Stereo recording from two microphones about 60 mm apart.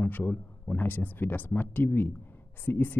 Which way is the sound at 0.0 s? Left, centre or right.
Left.